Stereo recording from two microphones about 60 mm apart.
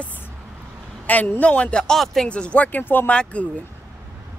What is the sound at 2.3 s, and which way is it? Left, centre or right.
A woman's voice, centre.